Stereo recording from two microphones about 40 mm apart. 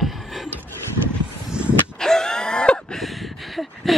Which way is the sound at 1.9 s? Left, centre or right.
Centre.